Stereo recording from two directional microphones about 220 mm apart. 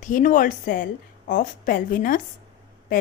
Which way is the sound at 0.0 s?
35° left (ahead or behind).